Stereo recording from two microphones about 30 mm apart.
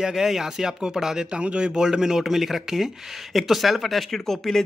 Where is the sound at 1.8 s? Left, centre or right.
Right.